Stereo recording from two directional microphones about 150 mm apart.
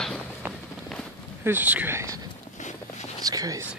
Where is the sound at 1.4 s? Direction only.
10° right (ahead or behind).